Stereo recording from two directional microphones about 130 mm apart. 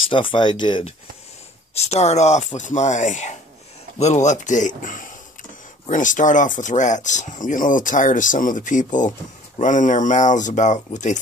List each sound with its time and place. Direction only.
0.1 s speech: 40° left (ahead or behind)
1.8 s speech: 55° left (ahead or behind); by 5.1 s 90° left
5.9 s speech: 80° left